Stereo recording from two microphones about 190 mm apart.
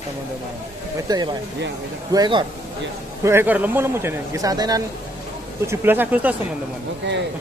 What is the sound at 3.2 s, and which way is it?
Speech, 10° right (ahead or behind).